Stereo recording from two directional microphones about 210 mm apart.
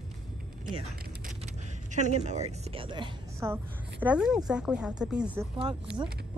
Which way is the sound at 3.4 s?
10° right (ahead or behind).